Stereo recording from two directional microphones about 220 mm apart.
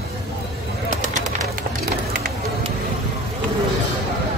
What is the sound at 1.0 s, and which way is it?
Bird, 35° right (ahead or behind).